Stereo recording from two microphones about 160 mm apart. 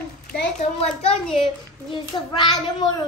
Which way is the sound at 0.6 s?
40° left (ahead or behind).